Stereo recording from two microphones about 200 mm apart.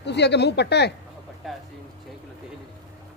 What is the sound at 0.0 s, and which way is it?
Speech, 55° left (ahead or behind).